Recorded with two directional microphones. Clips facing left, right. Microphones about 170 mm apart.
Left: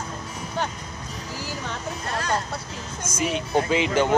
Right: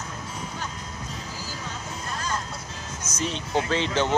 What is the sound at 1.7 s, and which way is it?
Vehicle, 70° left (ahead or behind).